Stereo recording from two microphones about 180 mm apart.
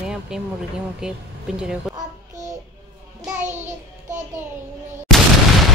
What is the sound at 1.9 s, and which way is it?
Child singing, 20° right (ahead or behind).